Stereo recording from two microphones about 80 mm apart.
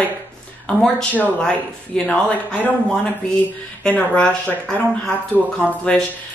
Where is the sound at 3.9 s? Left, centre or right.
Centre.